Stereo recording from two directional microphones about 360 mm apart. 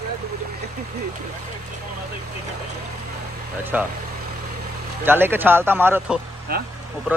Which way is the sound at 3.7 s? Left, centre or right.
Centre.